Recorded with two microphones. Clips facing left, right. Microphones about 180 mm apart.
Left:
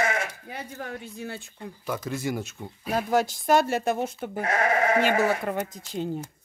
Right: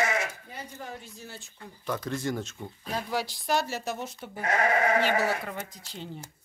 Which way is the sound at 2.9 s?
50° left (ahead or behind).